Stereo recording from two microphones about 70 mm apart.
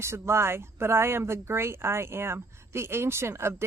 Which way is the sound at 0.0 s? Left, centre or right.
Right.